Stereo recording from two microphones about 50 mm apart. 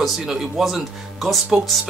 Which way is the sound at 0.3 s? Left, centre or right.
Centre.